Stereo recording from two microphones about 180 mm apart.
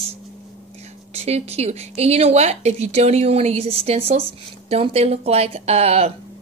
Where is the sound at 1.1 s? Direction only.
35° right (ahead or behind).